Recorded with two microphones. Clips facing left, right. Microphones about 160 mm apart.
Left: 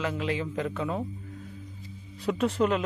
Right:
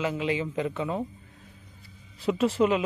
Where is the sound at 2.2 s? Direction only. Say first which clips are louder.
Right 2 dB; centre (ahead or behind).